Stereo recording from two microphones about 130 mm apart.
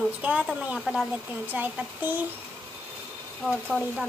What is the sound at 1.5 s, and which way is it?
Speech, 15° right (ahead or behind).